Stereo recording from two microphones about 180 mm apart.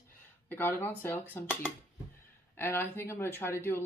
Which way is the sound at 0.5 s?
10° left (ahead or behind).